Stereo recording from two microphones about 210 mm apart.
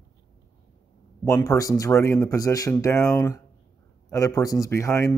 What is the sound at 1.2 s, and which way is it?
Speech, 15° left (ahead or behind).